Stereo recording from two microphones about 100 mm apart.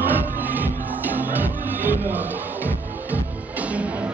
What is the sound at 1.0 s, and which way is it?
Music, 20° right (ahead or behind).